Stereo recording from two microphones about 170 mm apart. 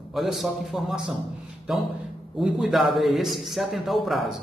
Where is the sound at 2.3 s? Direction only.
5° right (ahead or behind).